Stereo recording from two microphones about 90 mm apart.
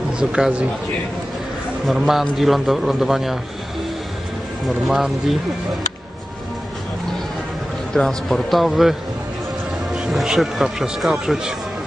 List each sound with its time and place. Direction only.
0.2 s a man's voice: 10° right (ahead or behind)
1.9 s speech: 5° right (ahead or behind)
4.6 s speech: centre (ahead or behind)
7.9 s speech: 5° left (ahead or behind)
9.9 s speech: 5° right (ahead or behind)